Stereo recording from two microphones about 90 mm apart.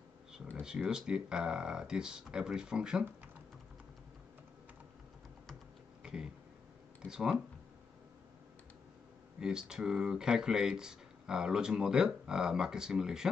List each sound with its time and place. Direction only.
0.6 s speech: 10° right (ahead or behind)
6.0 s a sound: 5° right (ahead or behind)
7.0 s speech: 5° right (ahead or behind)
9.4 s speech: 10° right (ahead or behind)